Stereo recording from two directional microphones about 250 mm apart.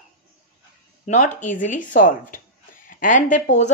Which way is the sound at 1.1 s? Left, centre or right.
Left.